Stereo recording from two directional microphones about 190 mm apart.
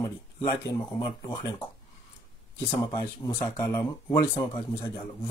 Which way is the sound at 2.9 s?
25° left (ahead or behind).